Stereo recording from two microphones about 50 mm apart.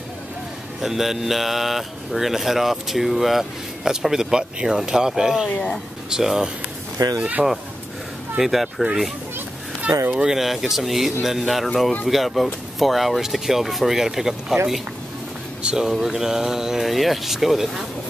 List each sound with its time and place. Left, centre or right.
0.7 s speech: centre
5.5 s speech: left
6.0 s speech: centre
10.2 s speech: centre
15.6 s speech: centre